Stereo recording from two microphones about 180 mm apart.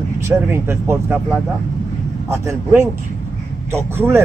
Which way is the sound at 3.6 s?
15° right (ahead or behind).